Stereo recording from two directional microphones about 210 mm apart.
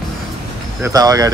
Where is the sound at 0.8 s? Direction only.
15° right (ahead or behind).